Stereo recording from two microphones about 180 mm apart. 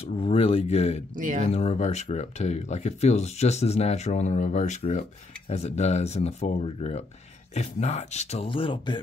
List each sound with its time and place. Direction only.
0.0 s speech: 30° left (ahead or behind)
1.1 s speech: 50° right (ahead or behind)
1.4 s speech: 35° left (ahead or behind)